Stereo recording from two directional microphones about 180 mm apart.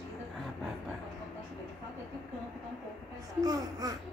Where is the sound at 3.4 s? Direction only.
20° right (ahead or behind).